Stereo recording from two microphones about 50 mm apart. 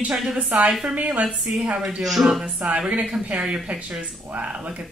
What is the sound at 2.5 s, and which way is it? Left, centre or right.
A woman's voice, right.